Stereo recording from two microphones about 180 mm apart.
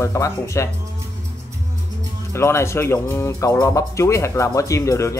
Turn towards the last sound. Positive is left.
turn(degrees=15)  # may be behind; listen again after turning